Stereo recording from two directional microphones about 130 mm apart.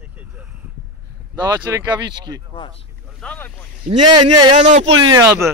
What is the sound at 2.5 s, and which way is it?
Speech, 45° left (ahead or behind).